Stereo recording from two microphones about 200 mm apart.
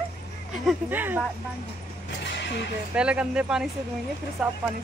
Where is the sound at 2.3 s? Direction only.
60° left (ahead or behind).